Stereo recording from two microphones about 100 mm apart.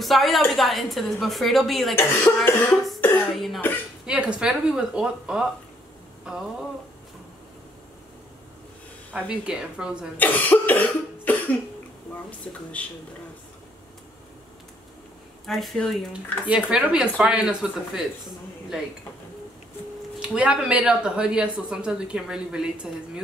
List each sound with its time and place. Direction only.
0.0 s a woman's voice: centre (ahead or behind)
2.0 s speech: 25° left (ahead or behind)
3.3 s a woman's voice: centre (ahead or behind)
4.0 s speech: 10° right (ahead or behind)
9.1 s speech: 10° right (ahead or behind)
10.1 s cough: 15° left (ahead or behind)
12.5 s speech: 10° left (ahead or behind)
15.4 s a woman's voice: centre (ahead or behind)
16.4 s speech: 10° right (ahead or behind)
20.2 s speech: 10° right (ahead or behind)